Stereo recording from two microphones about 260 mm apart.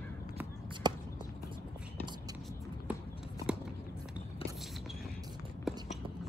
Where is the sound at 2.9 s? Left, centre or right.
Centre.